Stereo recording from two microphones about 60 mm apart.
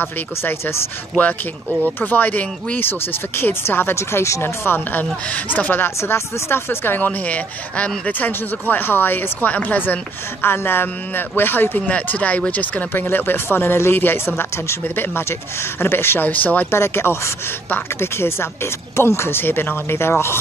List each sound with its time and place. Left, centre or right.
0.0 s speech: left
1.1 s speech: left
3.9 s speech: left
5.9 s speech: left
16.3 s speech: left
16.7 s speech: left